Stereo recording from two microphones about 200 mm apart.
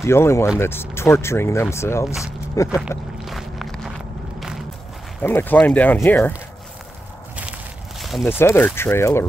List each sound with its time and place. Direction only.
0.0 s speech: 15° left (ahead or behind)
3.3 s walk: centre (ahead or behind)
4.4 s a sound: centre (ahead or behind)
5.2 s speech: 10° left (ahead or behind)
8.0 s a sound: centre (ahead or behind)
8.3 s speech: 10° left (ahead or behind)